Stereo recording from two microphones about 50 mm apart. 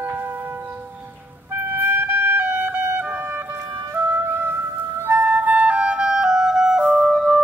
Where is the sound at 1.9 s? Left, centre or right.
Right.